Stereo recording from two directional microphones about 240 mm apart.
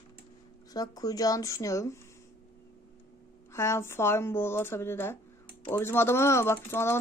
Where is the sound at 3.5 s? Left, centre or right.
Centre.